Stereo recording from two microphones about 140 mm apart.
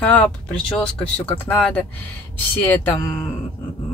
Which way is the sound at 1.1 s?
10° left (ahead or behind).